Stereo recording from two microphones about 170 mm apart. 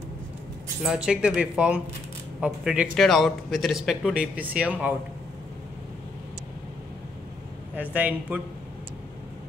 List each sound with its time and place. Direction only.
0.8 s speech: 5° right (ahead or behind)
7.7 s speech: 10° right (ahead or behind)